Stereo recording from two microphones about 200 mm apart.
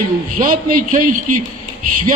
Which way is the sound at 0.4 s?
45° right (ahead or behind).